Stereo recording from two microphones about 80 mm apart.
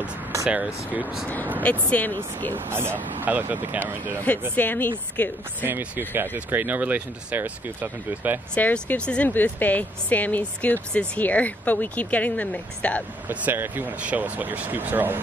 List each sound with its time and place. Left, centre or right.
0.5 s speech: centre
1.6 s speech: centre
2.5 s speech: right
4.6 s speech: left
5.6 s speech: right
8.5 s speech: centre
13.3 s speech: right